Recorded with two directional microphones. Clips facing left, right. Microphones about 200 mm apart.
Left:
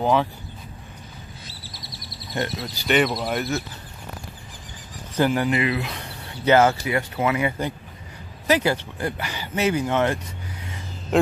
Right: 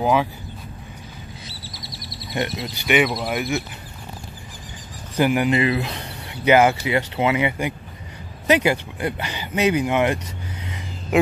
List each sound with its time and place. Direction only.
0.0 s speech: 10° right (ahead or behind)
2.3 s speech: 15° right (ahead or behind)
2.9 s speech: 5° right (ahead or behind)
5.1 s speech: 15° right (ahead or behind)
5.5 s speech: 30° right (ahead or behind)
6.2 s speech: 15° right (ahead or behind)